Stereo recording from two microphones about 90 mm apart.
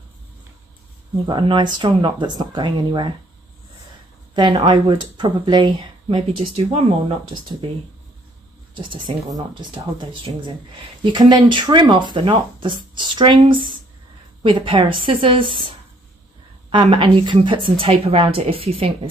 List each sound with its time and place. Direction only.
1.3 s speech: 60° right (ahead or behind)
4.4 s speech: 60° right (ahead or behind); by 6.6 s 90° right
7.1 s speech: 65° right (ahead or behind)
8.7 s a woman's voice: 60° right (ahead or behind)
16.7 s a woman's voice: 65° right (ahead or behind); by 18.9 s 90° right